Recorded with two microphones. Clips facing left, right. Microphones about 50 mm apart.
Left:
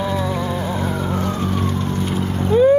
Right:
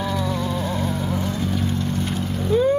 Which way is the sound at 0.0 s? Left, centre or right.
Centre.